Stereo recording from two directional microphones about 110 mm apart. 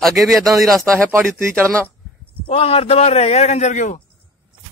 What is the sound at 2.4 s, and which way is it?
A man's voice, 60° left (ahead or behind).